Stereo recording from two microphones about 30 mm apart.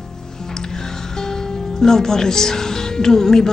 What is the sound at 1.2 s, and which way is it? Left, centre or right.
Speech, centre.